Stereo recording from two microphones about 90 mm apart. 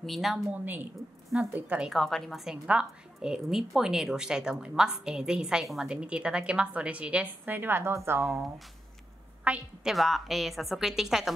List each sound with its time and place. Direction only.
0.0 s a woman's voice: centre (ahead or behind)
0.5 s a woman's voice: 20° right (ahead or behind)
1.9 s a woman's voice: 5° left (ahead or behind)
2.5 s a woman's voice: 10° right (ahead or behind); by 8.3 s 30° right (ahead or behind)
9.4 s a woman's voice: 15° right (ahead or behind)
9.9 s a woman's voice: centre (ahead or behind)